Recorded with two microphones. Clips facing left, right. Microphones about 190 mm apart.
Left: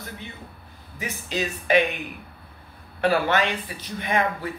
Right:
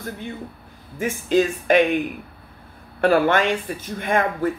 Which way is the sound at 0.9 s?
50° right (ahead or behind).